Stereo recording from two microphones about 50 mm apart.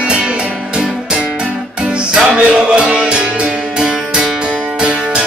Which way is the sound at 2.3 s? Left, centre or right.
Centre.